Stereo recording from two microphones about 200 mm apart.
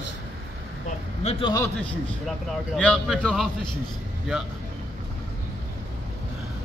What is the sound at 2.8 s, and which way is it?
Speech, 5° left (ahead or behind).